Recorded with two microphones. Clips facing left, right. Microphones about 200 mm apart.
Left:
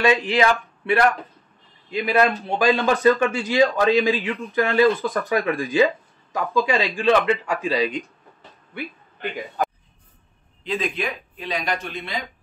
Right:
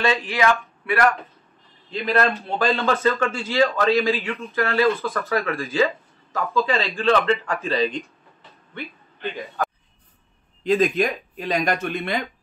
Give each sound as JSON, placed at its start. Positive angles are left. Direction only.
{"t": 0.0, "sound": "a man's voice", "side_deg": 15}
{"t": 0.6, "sound": "a sound", "side_deg": 25}
{"t": 1.9, "sound": "a man's voice", "side_deg": 15}
{"t": 10.6, "sound": "speech", "side_deg": -45}